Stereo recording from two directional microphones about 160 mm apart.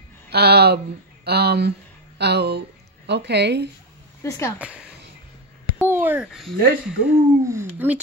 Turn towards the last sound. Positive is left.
turn(degrees=-15)  # may be behind; listen again after turning